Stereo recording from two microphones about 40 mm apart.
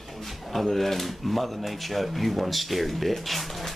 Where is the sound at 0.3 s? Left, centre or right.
Centre.